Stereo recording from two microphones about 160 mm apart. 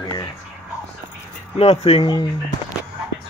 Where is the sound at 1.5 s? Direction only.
40° left (ahead or behind).